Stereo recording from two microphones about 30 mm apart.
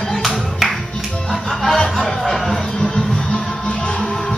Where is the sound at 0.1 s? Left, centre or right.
Centre.